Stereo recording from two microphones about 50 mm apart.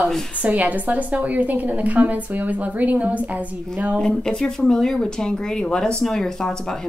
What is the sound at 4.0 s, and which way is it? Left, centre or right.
Speech, centre.